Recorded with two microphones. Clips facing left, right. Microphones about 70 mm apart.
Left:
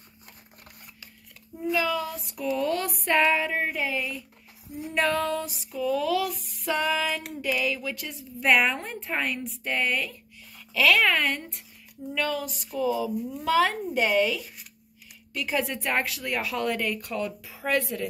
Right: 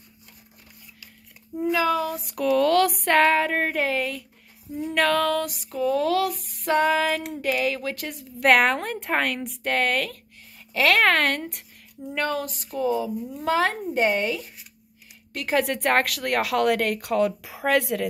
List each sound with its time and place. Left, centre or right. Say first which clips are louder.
1.7 s a sound: right 4 dB; right
2.3 s a woman's voice: right 8 dB; right
3.0 s a woman's voice: right 4 dB; right
10.7 s a woman's voice: right 2 dB; right
12.2 s speech: right 2 dB; right
15.3 s a woman's voice: right 5 dB; right